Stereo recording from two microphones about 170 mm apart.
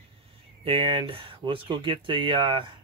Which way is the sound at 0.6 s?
30° right (ahead or behind).